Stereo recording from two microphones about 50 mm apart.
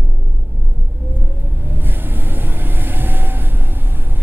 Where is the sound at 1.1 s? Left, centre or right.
Right.